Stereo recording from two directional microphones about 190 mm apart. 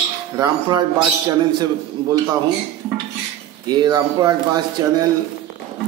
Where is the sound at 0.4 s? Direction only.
20° right (ahead or behind).